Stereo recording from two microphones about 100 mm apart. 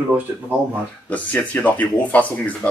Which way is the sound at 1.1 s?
15° left (ahead or behind).